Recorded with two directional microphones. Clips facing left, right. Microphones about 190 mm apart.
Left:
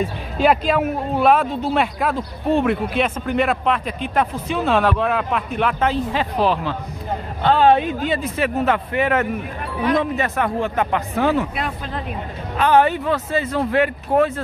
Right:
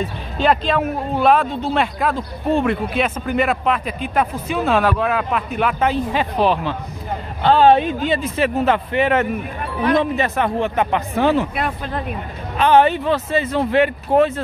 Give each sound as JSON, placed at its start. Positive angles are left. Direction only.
{"t": 0.4, "sound": "speech", "side_deg": 5}
{"t": 7.4, "sound": "a man's voice", "side_deg": -30}
{"t": 11.5, "sound": "speech", "side_deg": -55}
{"t": 12.5, "sound": "a man's voice", "side_deg": -25}